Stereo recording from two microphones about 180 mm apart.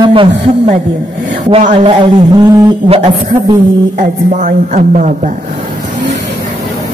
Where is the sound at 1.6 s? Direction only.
40° right (ahead or behind).